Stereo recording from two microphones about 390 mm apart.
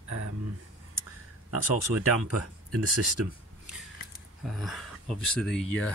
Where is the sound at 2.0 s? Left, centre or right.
Right.